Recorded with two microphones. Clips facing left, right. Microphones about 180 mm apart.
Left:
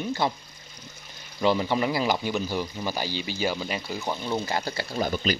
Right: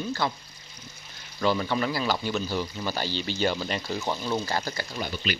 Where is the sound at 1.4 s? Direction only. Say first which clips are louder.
Left 2 dB; 20° left (ahead or behind).